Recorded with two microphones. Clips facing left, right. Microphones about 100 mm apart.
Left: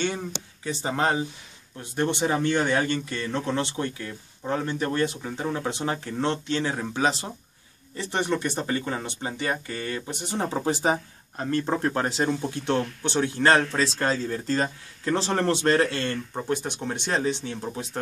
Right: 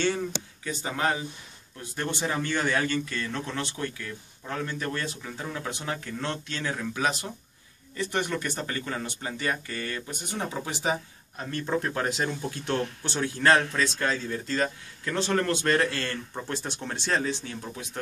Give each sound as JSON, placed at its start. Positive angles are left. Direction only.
{"t": 0.7, "sound": "speech", "side_deg": 30}
{"t": 1.8, "sound": "speech", "side_deg": 20}
{"t": 10.4, "sound": "speech", "side_deg": 35}
{"t": 13.7, "sound": "speech", "side_deg": 30}